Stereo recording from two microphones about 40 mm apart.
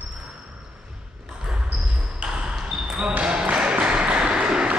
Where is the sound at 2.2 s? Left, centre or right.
Centre.